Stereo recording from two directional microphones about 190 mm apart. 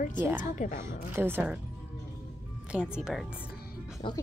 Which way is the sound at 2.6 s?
5° right (ahead or behind).